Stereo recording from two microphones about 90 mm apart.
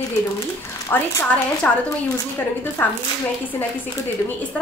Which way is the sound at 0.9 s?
25° left (ahead or behind).